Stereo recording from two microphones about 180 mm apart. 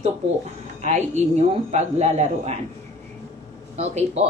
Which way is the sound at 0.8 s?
40° right (ahead or behind).